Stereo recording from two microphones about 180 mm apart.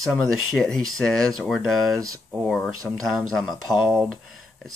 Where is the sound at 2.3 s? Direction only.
Centre (ahead or behind).